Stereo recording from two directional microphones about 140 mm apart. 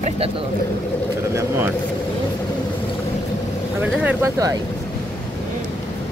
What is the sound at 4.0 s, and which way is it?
Speech, 10° right (ahead or behind).